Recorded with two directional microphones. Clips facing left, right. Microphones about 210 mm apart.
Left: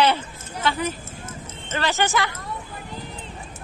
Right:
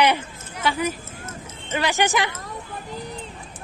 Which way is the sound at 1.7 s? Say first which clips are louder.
Right 1 dB; 15° right (ahead or behind).